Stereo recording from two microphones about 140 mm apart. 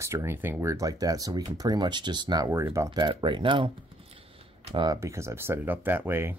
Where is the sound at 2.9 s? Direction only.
35° right (ahead or behind).